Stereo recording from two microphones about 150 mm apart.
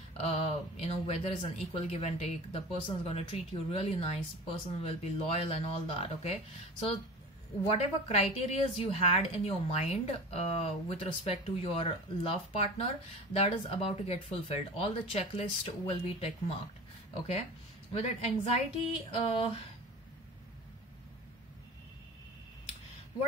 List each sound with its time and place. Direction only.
0.2 s a woman's voice: 45° left (ahead or behind)
17.9 s a woman's voice: 45° left (ahead or behind)